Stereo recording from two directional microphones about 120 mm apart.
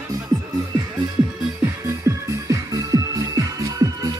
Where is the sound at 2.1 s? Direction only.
25° right (ahead or behind).